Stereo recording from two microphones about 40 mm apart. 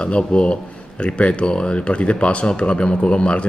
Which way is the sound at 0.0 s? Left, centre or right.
Left.